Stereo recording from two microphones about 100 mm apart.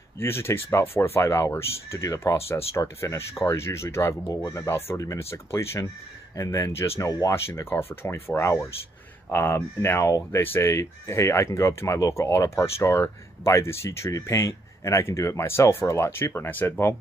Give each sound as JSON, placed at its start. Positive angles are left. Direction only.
{"t": 0.2, "sound": "speech", "side_deg": 25}